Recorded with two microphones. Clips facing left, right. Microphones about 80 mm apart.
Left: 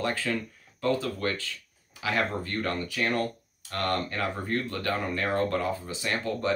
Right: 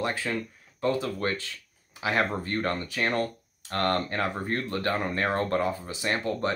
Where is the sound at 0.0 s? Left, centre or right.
Right.